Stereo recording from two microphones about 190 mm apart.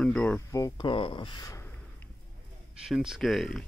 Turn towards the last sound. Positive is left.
turn(degrees=0)  # may be behind; listen again after turning